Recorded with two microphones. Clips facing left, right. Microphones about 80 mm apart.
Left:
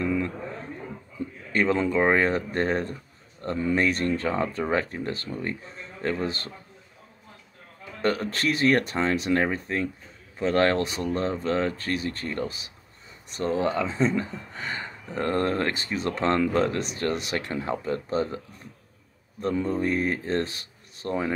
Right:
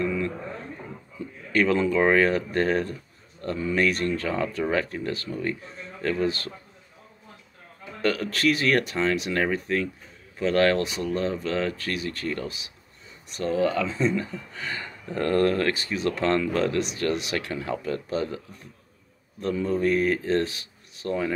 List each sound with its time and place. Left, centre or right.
1.5 s speech: left
8.0 s speech: left
19.5 s speech: left